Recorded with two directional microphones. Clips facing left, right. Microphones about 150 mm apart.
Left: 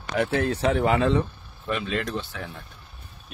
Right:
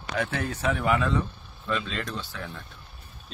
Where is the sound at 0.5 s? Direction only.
30° left (ahead or behind).